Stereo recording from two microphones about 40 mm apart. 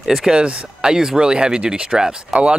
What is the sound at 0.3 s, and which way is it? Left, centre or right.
Speech, right.